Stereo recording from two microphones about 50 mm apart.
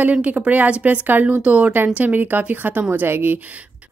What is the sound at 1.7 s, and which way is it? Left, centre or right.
A woman's voice, right.